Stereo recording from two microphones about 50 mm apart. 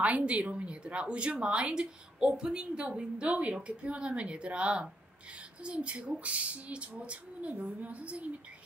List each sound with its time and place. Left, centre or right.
0.0 s a woman's voice: right